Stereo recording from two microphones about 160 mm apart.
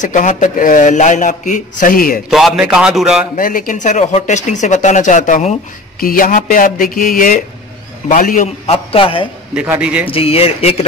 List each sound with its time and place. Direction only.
0.0 s speech: 50° left (ahead or behind)
2.2 s a man's voice: centre (ahead or behind)
3.3 s speech: 60° left (ahead or behind)
5.9 s speech: 60° left (ahead or behind)
8.5 s a man's voice: 35° left (ahead or behind)
9.5 s speech: 5° right (ahead or behind)
10.0 s a man's voice: 35° left (ahead or behind)